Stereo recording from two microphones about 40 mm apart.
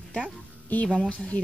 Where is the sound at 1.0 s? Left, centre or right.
Left.